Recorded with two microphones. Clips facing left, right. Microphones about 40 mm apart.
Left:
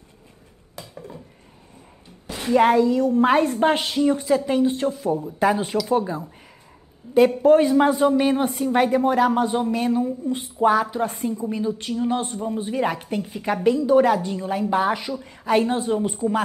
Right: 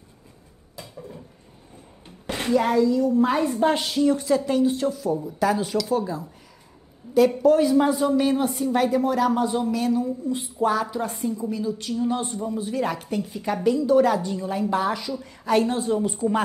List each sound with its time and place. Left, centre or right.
2.2 s a sound: right
2.5 s a woman's voice: left
4.1 s a woman's voice: centre
4.5 s speech: left
13.6 s a woman's voice: centre